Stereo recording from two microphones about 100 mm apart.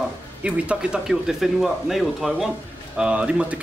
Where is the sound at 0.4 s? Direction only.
10° right (ahead or behind).